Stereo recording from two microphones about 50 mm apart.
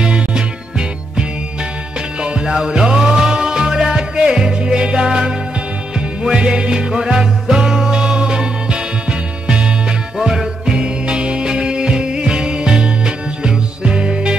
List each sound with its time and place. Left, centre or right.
0.0 s music: centre
10.1 s music: centre